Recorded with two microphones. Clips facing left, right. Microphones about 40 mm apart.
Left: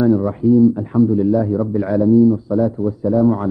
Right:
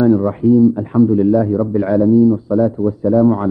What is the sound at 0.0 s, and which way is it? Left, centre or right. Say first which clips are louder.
A man's voice: right 2 dB; centre.